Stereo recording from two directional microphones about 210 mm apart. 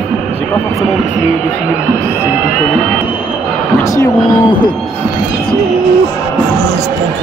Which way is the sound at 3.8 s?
15° left (ahead or behind).